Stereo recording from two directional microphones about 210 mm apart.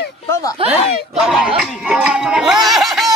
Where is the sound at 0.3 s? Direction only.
15° left (ahead or behind).